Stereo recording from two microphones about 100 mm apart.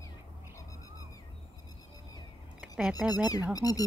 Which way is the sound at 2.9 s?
40° left (ahead or behind).